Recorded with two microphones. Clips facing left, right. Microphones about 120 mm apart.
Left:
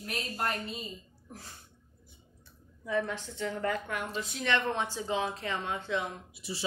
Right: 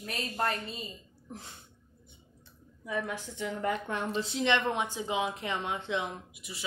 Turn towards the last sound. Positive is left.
turn(degrees=30)  # may be behind; listen again after turning